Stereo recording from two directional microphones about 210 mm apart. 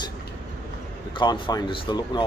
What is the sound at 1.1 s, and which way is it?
A man's voice, 25° left (ahead or behind).